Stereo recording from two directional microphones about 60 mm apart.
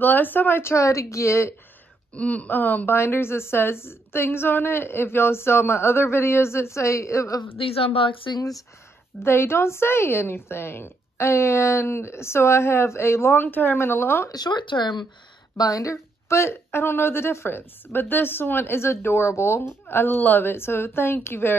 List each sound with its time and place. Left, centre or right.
0.0 s a woman's voice: left
2.1 s speech: left
3.0 s a woman's voice: left
9.2 s a woman's voice: left
15.5 s a woman's voice: left
18.9 s a woman's voice: left
20.5 s a woman's voice: left